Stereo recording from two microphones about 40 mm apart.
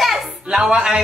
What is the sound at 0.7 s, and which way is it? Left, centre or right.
Speech, right.